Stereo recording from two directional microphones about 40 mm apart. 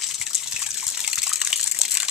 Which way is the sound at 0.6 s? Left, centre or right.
Right.